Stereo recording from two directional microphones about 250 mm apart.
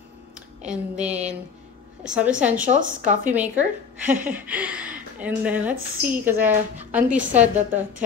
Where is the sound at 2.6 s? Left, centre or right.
Right.